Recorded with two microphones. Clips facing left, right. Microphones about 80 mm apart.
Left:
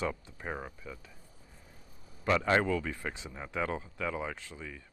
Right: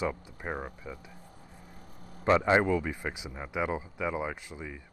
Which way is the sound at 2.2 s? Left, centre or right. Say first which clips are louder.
Right 4 dB; right.